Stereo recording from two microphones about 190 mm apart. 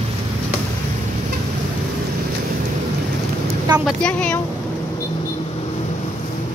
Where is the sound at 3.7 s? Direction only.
Centre (ahead or behind).